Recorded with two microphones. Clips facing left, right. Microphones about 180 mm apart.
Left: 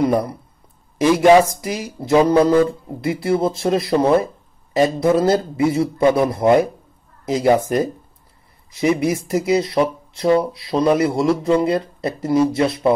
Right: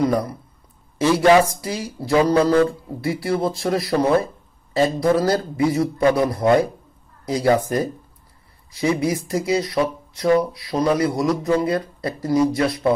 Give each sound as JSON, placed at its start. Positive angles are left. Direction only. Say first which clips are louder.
{"t": 0.0, "sound": "speech", "louder": "left 2 dB", "side_deg": 25}
{"t": 0.9, "sound": "a man's voice", "louder": "left 3 dB", "side_deg": 15}